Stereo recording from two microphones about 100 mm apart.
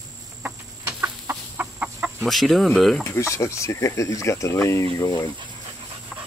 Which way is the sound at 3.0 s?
30° left (ahead or behind).